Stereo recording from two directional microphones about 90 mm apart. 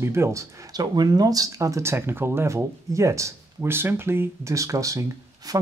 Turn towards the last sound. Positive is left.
turn(degrees=-35)  # may be behind; listen again after turning